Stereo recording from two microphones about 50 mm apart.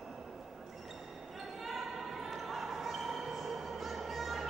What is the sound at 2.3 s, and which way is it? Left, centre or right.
Music, centre.